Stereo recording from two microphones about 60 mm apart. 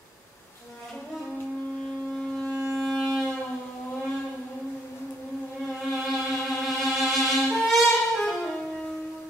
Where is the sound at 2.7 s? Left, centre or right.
Centre.